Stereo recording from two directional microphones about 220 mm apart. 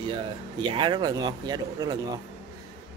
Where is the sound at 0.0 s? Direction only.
20° right (ahead or behind).